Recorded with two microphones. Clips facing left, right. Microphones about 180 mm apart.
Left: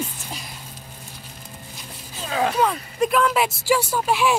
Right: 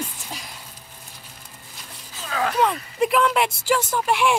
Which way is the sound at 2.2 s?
30° left (ahead or behind).